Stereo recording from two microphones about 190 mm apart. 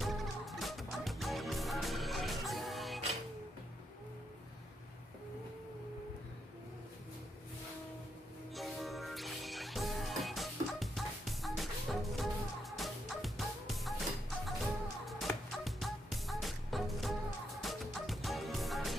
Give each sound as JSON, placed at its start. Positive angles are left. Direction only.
{"t": 0.0, "sound": "fowl", "side_deg": 0}
{"t": 8.5, "sound": "music", "side_deg": 0}
{"t": 15.0, "sound": "fowl", "side_deg": 0}